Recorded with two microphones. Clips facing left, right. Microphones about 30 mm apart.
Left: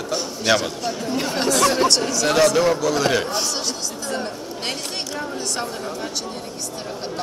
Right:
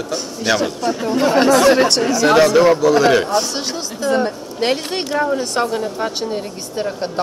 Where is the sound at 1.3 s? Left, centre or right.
Centre.